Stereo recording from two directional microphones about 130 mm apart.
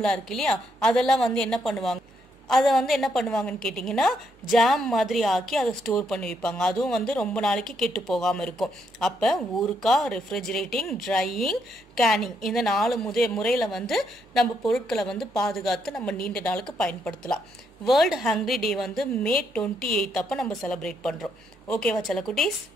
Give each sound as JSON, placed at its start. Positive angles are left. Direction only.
{"t": 0.0, "sound": "a woman's voice", "side_deg": 5}